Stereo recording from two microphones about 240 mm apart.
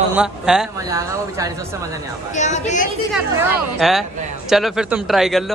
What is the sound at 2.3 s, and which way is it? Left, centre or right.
Speech, left.